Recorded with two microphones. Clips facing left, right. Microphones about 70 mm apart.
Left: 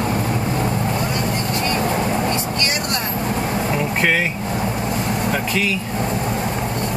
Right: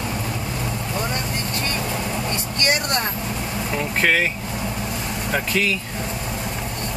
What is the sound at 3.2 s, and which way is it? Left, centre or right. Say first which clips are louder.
Vehicle: left 6 dB; left.